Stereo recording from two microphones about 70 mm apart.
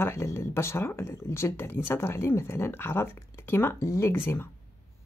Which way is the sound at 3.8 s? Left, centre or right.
Left.